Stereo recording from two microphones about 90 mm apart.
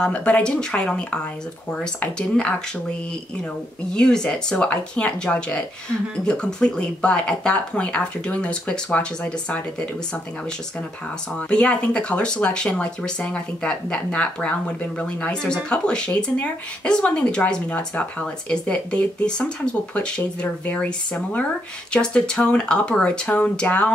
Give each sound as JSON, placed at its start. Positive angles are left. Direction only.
{"t": 0.0, "sound": "speech", "side_deg": 15}
{"t": 3.9, "sound": "speech", "side_deg": 10}
{"t": 11.3, "sound": "speech", "side_deg": 10}